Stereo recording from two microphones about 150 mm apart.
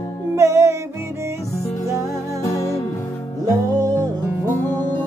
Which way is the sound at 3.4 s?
25° right (ahead or behind).